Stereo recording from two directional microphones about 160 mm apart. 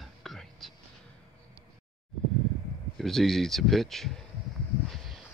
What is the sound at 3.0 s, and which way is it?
Speech, centre (ahead or behind).